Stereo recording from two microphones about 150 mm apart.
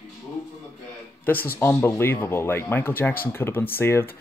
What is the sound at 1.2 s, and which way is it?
A man's voice, 15° left (ahead or behind).